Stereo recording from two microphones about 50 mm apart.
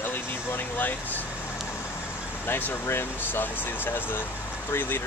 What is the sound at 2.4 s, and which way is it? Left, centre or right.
Speech, left.